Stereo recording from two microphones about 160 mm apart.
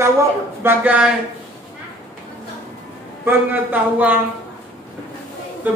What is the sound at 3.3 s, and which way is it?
Speech, 10° right (ahead or behind).